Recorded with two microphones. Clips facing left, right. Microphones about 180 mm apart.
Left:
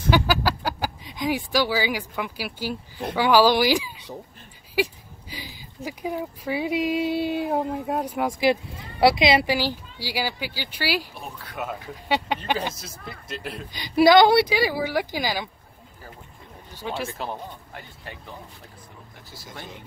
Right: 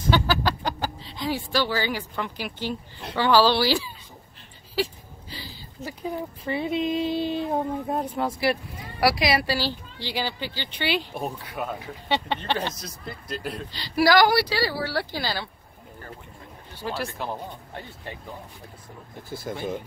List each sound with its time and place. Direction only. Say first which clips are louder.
0.1 s speech: left 1 dB; 10° left (ahead or behind)
13.7 s speech: left 4 dB; 20° left (ahead or behind)
16.8 s speech: even; centre (ahead or behind)
19.3 s speech: right 12 dB; 50° right (ahead or behind)